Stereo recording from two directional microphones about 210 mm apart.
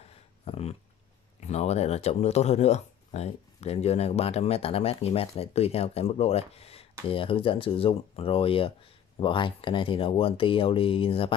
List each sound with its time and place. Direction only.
0.5 s speech: 30° left (ahead or behind)